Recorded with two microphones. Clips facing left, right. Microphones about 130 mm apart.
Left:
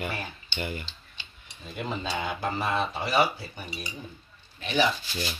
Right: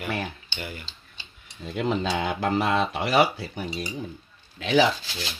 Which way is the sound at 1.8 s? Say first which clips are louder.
Right 6 dB; 85° right.